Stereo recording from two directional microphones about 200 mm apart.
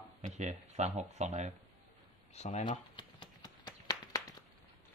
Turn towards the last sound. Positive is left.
turn(degrees=15)  # may be behind; listen again after turning